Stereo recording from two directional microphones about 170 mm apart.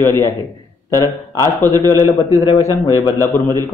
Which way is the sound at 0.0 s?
15° left (ahead or behind).